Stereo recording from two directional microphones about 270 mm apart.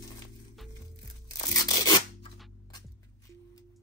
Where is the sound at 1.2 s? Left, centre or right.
Centre.